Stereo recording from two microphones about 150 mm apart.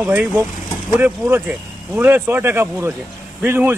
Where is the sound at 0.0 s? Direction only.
10° right (ahead or behind).